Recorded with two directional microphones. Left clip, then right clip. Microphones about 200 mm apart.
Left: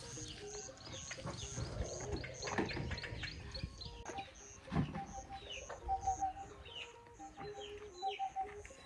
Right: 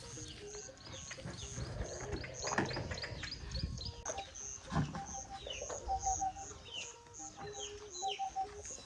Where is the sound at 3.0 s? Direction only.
60° right (ahead or behind).